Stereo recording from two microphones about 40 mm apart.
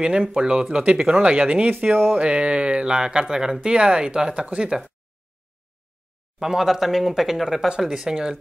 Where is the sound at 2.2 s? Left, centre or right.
Right.